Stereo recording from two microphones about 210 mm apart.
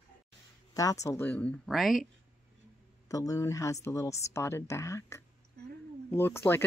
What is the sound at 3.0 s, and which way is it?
Speech, 15° left (ahead or behind).